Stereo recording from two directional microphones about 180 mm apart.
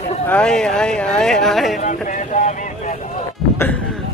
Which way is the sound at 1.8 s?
45° left (ahead or behind).